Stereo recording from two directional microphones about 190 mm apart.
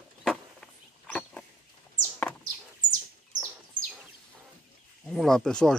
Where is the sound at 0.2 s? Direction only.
Centre (ahead or behind).